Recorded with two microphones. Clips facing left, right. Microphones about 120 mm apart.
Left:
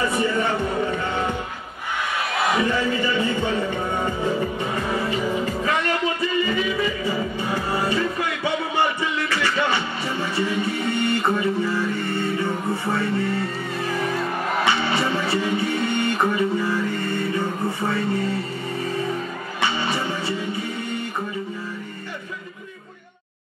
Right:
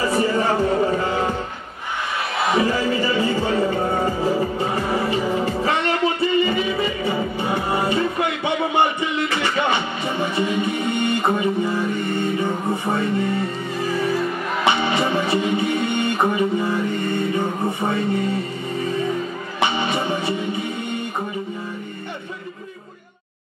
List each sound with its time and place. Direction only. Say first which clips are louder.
0.3 s music: right 4 dB; 35° right (ahead or behind)
2.5 s music: right 4 dB; 35° right (ahead or behind); by 13.5 s 20° right (ahead or behind)
14.7 s music: right 5 dB; 20° right (ahead or behind)
19.6 s music: right 3 dB; 20° right (ahead or behind)